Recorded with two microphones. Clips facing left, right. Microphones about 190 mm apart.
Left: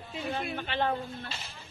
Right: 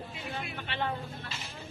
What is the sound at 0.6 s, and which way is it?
Speech, 30° left (ahead or behind).